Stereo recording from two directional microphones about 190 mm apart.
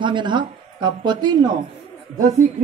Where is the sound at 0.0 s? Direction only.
25° right (ahead or behind).